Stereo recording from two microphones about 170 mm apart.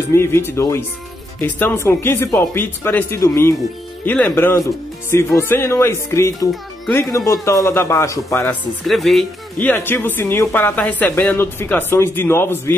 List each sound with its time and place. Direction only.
0.1 s speech: 15° left (ahead or behind)
8.8 s speech: centre (ahead or behind)